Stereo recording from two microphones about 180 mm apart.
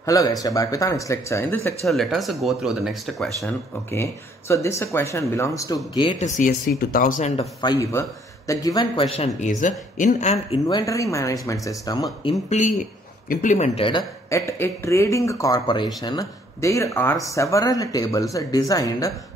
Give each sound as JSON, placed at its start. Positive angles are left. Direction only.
{"t": 0.0, "sound": "speech", "side_deg": 20}
{"t": 1.9, "sound": "speech", "side_deg": 0}
{"t": 3.4, "sound": "speech", "side_deg": 15}
{"t": 5.9, "sound": "speech", "side_deg": 30}
{"t": 6.2, "sound": "speech", "side_deg": 45}
{"t": 7.3, "sound": "speech", "side_deg": 25}
{"t": 9.1, "sound": "speech", "side_deg": 35}
{"t": 9.6, "sound": "speech", "side_deg": 45}
{"t": 10.7, "sound": "speech", "side_deg": 20}
{"t": 12.4, "sound": "speech", "side_deg": 40}
{"t": 14.3, "sound": "speech", "side_deg": 15}